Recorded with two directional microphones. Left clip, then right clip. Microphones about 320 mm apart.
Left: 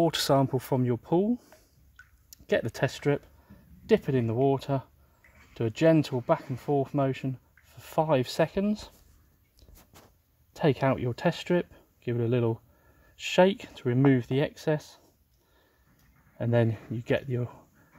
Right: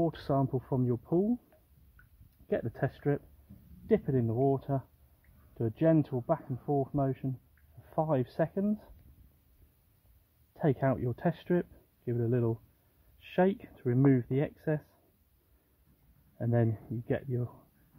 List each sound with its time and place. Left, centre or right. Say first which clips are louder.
0.0 s speech: left 7 dB; left
2.4 s speech: left 6 dB; left
10.5 s speech: left 5 dB; left
16.3 s speech: left 5 dB; left